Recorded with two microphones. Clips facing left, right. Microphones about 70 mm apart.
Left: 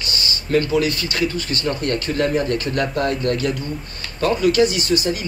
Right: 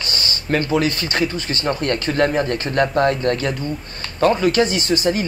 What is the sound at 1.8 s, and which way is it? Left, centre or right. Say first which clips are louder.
Speech: right 3 dB; right.